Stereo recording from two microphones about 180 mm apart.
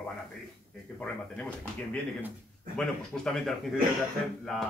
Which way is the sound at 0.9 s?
5° left (ahead or behind).